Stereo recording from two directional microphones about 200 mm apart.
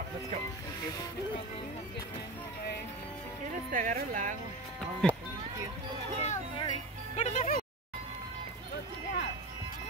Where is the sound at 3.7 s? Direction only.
40° right (ahead or behind).